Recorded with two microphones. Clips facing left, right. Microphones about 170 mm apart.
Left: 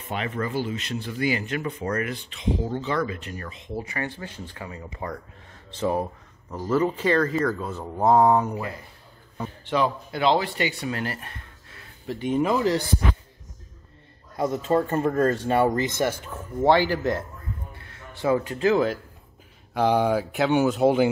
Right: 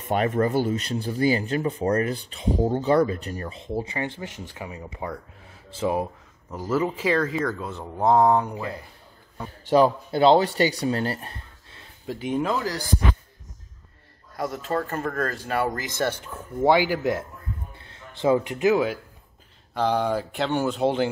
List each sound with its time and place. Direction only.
0.0 s speech: 45° right (ahead or behind); by 4.8 s 20° right (ahead or behind)
5.0 s speech: 5° right (ahead or behind)
9.7 s speech: 35° right (ahead or behind)
12.1 s speech: 5° right (ahead or behind)
12.5 s a man's voice: 25° left (ahead or behind)
14.3 s a man's voice: 20° left (ahead or behind)
16.6 s speech: 10° right (ahead or behind)
17.7 s a man's voice: 25° right (ahead or behind); by 18.9 s 10° right (ahead or behind)
19.7 s speech: 10° left (ahead or behind)